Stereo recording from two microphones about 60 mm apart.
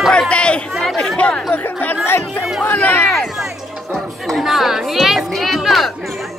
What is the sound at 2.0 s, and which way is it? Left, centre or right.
Speech, left.